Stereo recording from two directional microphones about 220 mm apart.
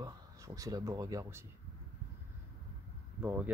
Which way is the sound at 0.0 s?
15° right (ahead or behind).